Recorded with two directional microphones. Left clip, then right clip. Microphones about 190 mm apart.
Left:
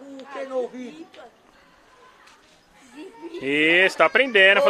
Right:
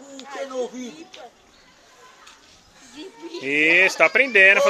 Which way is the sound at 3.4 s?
20° left (ahead or behind).